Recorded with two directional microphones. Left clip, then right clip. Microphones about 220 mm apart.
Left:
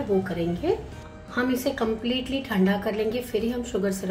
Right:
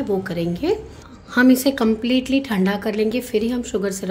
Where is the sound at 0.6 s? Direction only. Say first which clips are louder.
Right 4 dB; 50° right (ahead or behind).